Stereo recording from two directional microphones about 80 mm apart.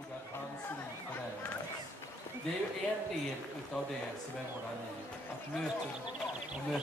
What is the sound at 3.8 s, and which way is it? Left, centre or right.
Speech, centre.